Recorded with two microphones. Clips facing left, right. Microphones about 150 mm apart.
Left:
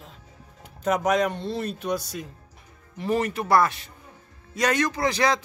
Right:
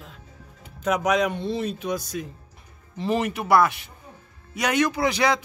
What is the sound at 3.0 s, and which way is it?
Speech, 20° right (ahead or behind).